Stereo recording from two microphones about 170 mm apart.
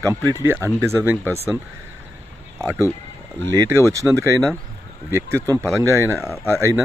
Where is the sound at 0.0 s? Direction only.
15° right (ahead or behind).